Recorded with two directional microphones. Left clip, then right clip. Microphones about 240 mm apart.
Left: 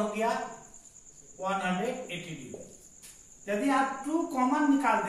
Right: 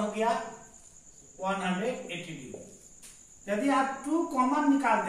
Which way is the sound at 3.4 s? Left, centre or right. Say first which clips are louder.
Even; centre.